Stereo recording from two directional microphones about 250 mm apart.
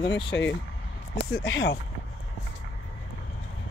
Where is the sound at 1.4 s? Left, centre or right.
Left.